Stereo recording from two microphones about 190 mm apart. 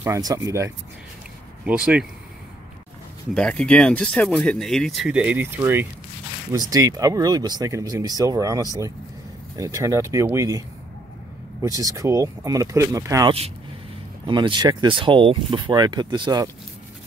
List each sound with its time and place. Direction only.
0.0 s speech: 15° right (ahead or behind)
1.7 s speech: 5° right (ahead or behind)
3.3 s speech: 5° left (ahead or behind); by 10.6 s 15° right (ahead or behind)
11.6 s speech: 20° right (ahead or behind)